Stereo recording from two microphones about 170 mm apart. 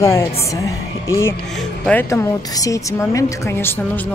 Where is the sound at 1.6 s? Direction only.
5° left (ahead or behind).